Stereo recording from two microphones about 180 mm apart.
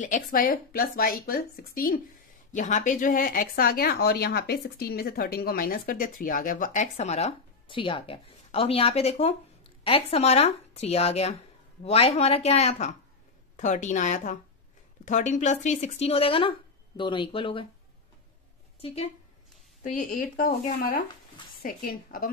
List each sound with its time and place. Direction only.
0.0 s speech: 45° left (ahead or behind)
2.5 s speech: 45° left (ahead or behind)
18.8 s a woman's voice: 35° left (ahead or behind)
19.8 s speech: 45° left (ahead or behind)